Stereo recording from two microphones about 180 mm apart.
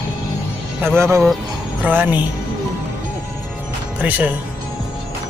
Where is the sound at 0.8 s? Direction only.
15° right (ahead or behind).